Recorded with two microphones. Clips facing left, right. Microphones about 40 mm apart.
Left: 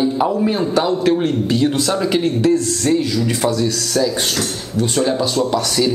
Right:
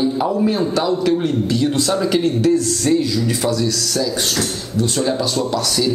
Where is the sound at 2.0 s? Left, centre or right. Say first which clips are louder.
Even; centre.